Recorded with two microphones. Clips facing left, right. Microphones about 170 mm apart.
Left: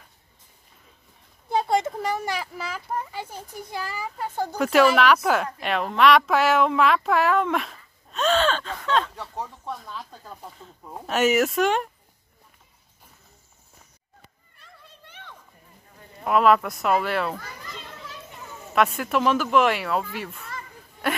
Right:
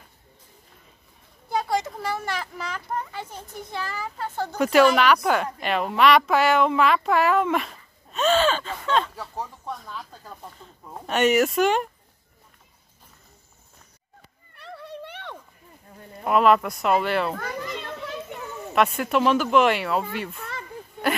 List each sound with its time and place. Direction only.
1.5 s speech: 25° left (ahead or behind)
4.6 s a woman's voice: centre (ahead or behind)
14.5 s a sound: 70° right (ahead or behind)
16.3 s speech: centre (ahead or behind)
17.4 s children playing: 65° right (ahead or behind)
18.8 s speech: centre (ahead or behind)